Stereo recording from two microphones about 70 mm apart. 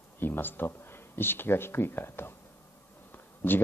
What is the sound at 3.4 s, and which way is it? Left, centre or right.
Speech, left.